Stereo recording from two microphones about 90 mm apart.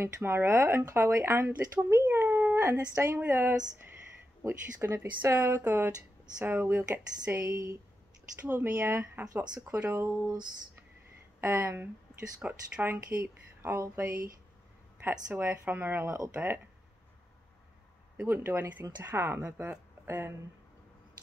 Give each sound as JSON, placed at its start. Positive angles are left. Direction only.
{"t": 0.0, "sound": "speech", "side_deg": -25}
{"t": 10.2, "sound": "a sound", "side_deg": -50}
{"t": 11.4, "sound": "speech", "side_deg": -30}
{"t": 15.2, "sound": "speech", "side_deg": -15}
{"t": 18.1, "sound": "speech", "side_deg": -25}